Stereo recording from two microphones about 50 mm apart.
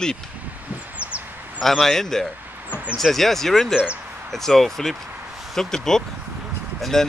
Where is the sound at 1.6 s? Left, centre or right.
Centre.